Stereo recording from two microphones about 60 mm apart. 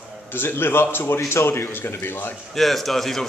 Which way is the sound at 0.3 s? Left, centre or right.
Left.